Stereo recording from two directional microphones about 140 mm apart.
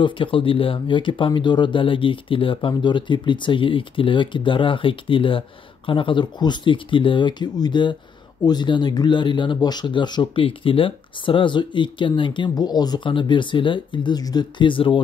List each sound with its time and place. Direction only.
0.0 s speech: 40° left (ahead or behind)